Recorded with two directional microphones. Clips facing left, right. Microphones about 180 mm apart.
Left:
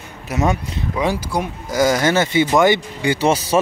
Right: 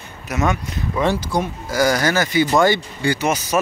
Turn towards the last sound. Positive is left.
turn(degrees=30)  # may be behind; listen again after turning